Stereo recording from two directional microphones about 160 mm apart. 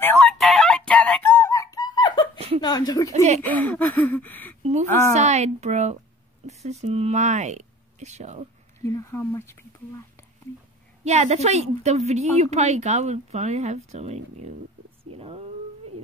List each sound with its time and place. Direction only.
0.0 s fowl: 5° left (ahead or behind); by 2.2 s 30° left (ahead or behind)
2.3 s chuckle: 35° right (ahead or behind)
2.6 s a woman's voice: 25° left (ahead or behind)
3.1 s a woman's voice: 45° right (ahead or behind)
3.4 s speech: 10° left (ahead or behind)
5.1 s a woman's voice: 45° right (ahead or behind)
8.8 s speech: 20° left (ahead or behind)
11.1 s a woman's voice: 45° right (ahead or behind)